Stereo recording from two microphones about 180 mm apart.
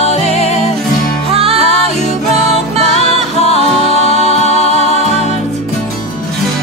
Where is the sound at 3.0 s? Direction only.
35° left (ahead or behind).